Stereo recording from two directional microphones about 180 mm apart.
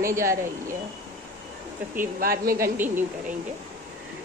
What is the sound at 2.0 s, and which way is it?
Speech, 55° right (ahead or behind).